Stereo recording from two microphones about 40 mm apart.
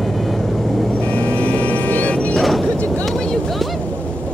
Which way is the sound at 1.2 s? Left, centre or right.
Left.